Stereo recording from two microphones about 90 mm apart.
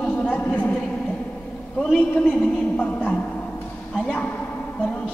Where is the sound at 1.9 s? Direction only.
15° left (ahead or behind).